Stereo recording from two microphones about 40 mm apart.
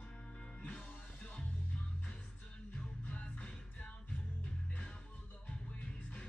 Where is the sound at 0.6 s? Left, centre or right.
Left.